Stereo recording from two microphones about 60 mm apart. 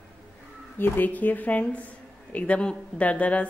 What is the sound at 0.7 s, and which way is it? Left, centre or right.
A woman's voice, left.